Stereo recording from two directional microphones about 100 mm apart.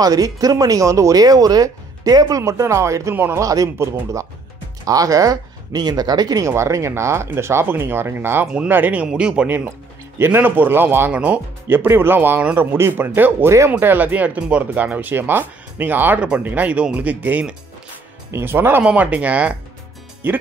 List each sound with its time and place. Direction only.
0.0 s speech: 40° right (ahead or behind); by 9.6 s 10° right (ahead or behind)
9.7 s speech: 25° right (ahead or behind)